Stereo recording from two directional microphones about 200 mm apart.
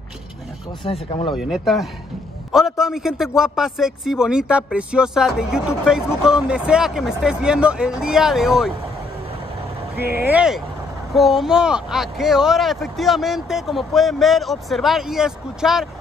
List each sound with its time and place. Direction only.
0.8 s speech: 30° left (ahead or behind)
1.3 s speech: centre (ahead or behind)
10.1 s speech: 10° right (ahead or behind)